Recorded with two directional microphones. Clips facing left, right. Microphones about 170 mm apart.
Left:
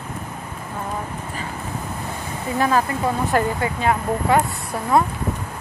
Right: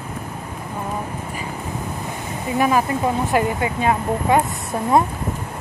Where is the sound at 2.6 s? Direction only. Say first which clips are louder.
Right 2 dB; 15° right (ahead or behind).